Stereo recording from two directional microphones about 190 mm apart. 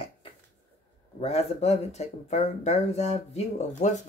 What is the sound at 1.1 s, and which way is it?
Speech, 35° left (ahead or behind).